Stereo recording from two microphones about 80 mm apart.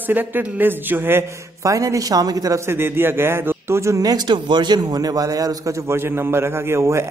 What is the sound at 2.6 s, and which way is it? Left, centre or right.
A woman's voice, right.